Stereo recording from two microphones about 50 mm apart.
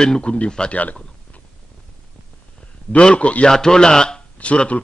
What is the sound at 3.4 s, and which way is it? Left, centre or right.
Speech, centre.